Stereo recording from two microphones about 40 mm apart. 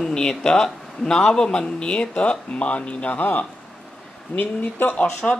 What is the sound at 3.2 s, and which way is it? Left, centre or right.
Speech, left.